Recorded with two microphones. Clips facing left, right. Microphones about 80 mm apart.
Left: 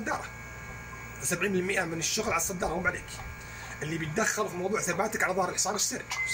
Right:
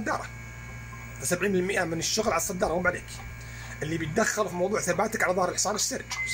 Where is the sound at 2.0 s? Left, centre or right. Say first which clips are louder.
Right 4 dB; right.